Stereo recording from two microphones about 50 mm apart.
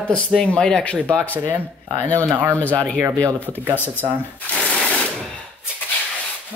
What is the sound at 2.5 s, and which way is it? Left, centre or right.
Speech, left.